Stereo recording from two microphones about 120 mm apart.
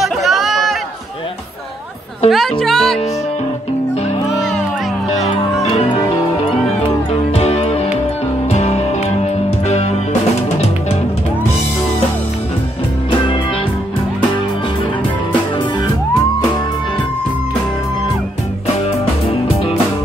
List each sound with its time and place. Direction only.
0.0 s chatter: centre (ahead or behind)
2.2 s speech: centre (ahead or behind)
5.6 s music: 60° left (ahead or behind)
7.1 s music: 60° left (ahead or behind)